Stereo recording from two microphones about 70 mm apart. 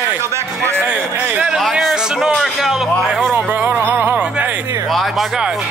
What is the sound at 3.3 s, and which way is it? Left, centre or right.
Music, right.